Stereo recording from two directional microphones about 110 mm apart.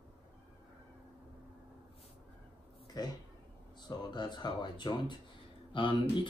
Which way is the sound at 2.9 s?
35° left (ahead or behind).